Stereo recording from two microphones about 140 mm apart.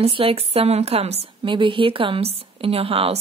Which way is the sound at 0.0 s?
40° right (ahead or behind).